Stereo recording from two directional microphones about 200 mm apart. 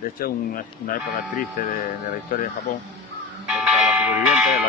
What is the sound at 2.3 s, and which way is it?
Speech, 45° left (ahead or behind).